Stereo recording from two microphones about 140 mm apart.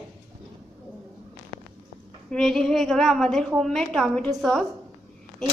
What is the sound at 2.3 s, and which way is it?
A woman's voice, 5° left (ahead or behind).